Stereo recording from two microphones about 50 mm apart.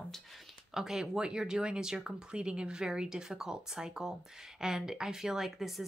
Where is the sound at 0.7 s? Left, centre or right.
Centre.